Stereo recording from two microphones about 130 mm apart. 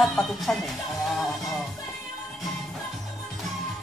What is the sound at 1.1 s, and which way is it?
Music, centre (ahead or behind).